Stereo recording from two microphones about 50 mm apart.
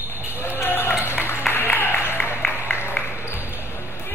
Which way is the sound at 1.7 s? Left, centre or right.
Left.